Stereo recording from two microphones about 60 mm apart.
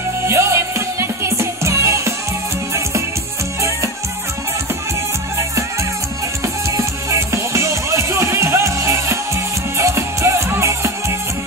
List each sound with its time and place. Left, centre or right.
0.3 s music: right
6.4 s music: right